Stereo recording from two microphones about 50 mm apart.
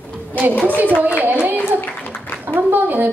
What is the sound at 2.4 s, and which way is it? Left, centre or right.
Speech, right.